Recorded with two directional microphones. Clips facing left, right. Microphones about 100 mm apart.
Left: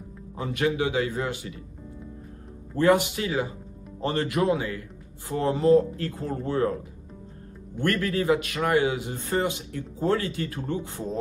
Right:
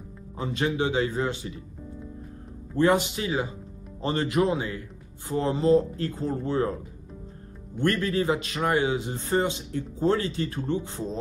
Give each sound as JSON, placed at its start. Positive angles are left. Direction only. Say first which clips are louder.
{"t": 0.4, "sound": "speech", "louder": "left 1 dB", "side_deg": -25}
{"t": 2.8, "sound": "speech", "louder": "left 1 dB", "side_deg": -25}
{"t": 7.8, "sound": "speech", "louder": "right 1 dB", "side_deg": -25}